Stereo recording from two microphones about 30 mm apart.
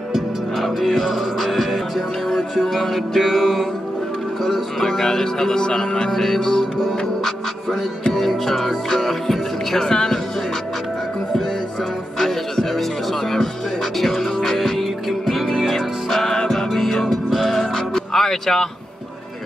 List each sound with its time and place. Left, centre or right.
0.1 s music: centre
3.2 s music: centre
4.5 s music: centre
8.5 s music: centre
8.9 s speech: centre
9.8 s speech: left
12.2 s music: centre
13.9 s music: centre
15.7 s music: centre